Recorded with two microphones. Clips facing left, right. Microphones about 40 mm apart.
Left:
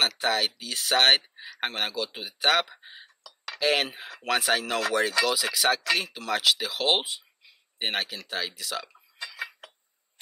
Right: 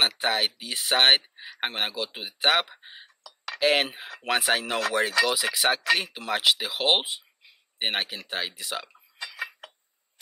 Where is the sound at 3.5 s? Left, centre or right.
Centre.